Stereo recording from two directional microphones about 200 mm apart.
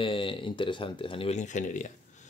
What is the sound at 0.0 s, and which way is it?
Speech, 25° left (ahead or behind).